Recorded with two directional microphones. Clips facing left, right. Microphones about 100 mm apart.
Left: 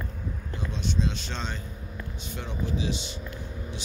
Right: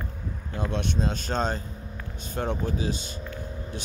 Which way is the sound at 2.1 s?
45° right (ahead or behind).